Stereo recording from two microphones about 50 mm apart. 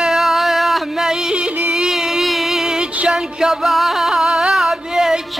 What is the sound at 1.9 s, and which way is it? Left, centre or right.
Music, centre.